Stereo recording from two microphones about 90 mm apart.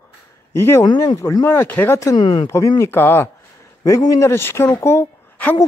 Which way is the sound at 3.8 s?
45° left (ahead or behind).